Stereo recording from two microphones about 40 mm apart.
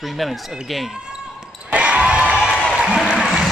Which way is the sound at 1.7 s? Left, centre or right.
Right.